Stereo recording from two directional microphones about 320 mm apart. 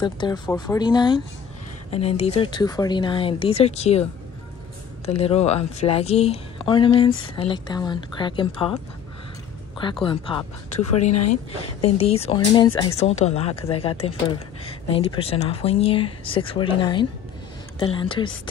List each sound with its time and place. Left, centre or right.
0.0 s speech: centre
5.0 s a woman's voice: centre
10.0 s a woman's voice: centre